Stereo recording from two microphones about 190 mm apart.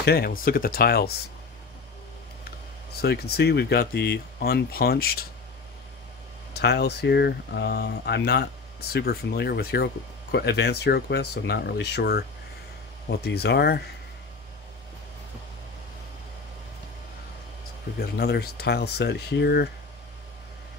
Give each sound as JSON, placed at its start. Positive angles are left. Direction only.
{"t": 0.0, "sound": "speech", "side_deg": 55}
{"t": 3.0, "sound": "speech", "side_deg": 55}
{"t": 6.6, "sound": "speech", "side_deg": 60}
{"t": 17.9, "sound": "speech", "side_deg": 55}